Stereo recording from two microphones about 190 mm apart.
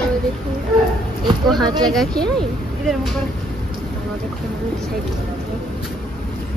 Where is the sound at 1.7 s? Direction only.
20° right (ahead or behind).